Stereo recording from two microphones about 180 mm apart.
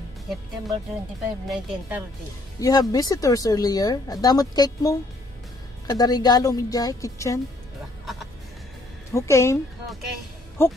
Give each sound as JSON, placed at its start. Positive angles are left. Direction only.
{"t": 1.5, "sound": "speech", "side_deg": -10}
{"t": 2.6, "sound": "speech", "side_deg": 20}
{"t": 9.1, "sound": "speech", "side_deg": 15}
{"t": 10.6, "sound": "speech", "side_deg": 15}